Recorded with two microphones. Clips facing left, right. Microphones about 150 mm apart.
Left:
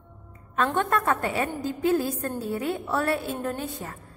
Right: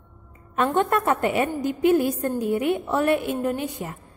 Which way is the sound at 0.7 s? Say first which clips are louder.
Right 4 dB; 20° right (ahead or behind).